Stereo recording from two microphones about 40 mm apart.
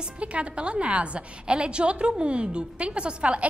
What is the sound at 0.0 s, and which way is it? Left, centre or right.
A woman's voice, right.